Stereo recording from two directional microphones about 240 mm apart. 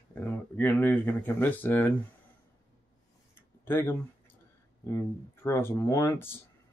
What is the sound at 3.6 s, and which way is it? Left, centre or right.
Speech, centre.